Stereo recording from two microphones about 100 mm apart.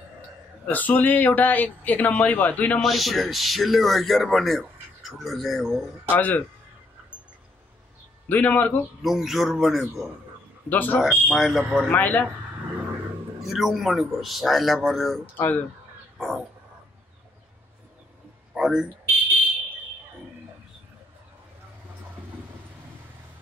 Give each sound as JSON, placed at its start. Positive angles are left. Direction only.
{"t": 0.7, "sound": "a man's voice", "side_deg": 15}
{"t": 2.8, "sound": "a man's voice", "side_deg": 0}
{"t": 6.1, "sound": "a man's voice", "side_deg": 15}
{"t": 8.3, "sound": "a man's voice", "side_deg": 15}
{"t": 9.0, "sound": "a man's voice", "side_deg": -5}
{"t": 10.7, "sound": "a man's voice", "side_deg": 15}
{"t": 11.0, "sound": "a man's voice", "side_deg": 0}
{"t": 11.9, "sound": "a man's voice", "side_deg": 15}
{"t": 13.5, "sound": "a man's voice", "side_deg": 0}
{"t": 15.3, "sound": "speech", "side_deg": 20}
{"t": 16.2, "sound": "a man's voice", "side_deg": 0}
{"t": 18.5, "sound": "a sound", "side_deg": -5}